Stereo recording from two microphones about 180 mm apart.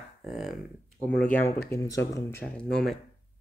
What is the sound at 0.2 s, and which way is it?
Speech, centre (ahead or behind).